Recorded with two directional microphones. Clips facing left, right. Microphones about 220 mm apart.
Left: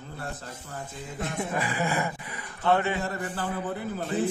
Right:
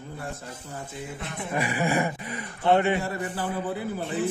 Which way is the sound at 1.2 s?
45° left (ahead or behind).